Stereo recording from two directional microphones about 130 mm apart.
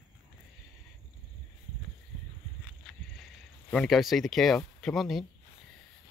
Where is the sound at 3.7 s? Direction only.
5° left (ahead or behind).